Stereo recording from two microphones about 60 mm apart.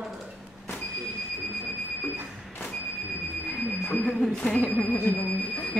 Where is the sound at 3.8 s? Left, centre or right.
Centre; by 5.7 s left.